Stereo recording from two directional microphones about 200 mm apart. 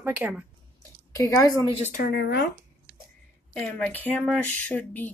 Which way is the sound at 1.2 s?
15° left (ahead or behind).